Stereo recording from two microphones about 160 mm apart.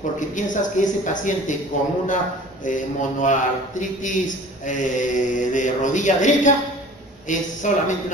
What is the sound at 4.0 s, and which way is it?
A man's voice, 50° left (ahead or behind).